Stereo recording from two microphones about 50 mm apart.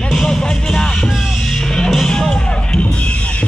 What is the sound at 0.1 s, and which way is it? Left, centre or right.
Music, centre.